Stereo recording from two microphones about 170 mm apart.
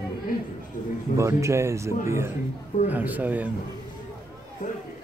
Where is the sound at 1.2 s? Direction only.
15° right (ahead or behind).